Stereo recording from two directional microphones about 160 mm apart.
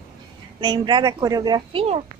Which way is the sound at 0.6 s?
30° right (ahead or behind).